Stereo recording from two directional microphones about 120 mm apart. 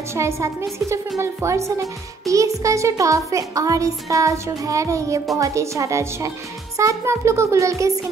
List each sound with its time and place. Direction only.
0.1 s speech: 25° right (ahead or behind)